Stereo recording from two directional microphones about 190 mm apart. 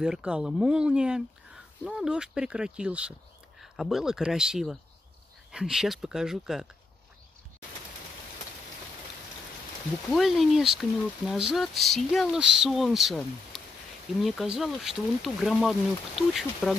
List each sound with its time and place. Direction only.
0.0 s speech: 5° right (ahead or behind)
10.1 s speech: centre (ahead or behind)